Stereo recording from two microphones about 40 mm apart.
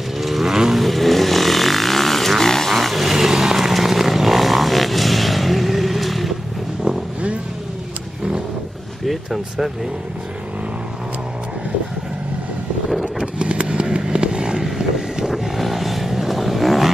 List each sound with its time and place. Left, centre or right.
0.2 s vehicle: centre
9.0 s vehicle: centre
13.0 s vehicle: right
15.3 s vehicle: centre